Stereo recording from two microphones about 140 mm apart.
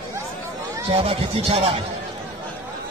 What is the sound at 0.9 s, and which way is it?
Speech, 45° right (ahead or behind).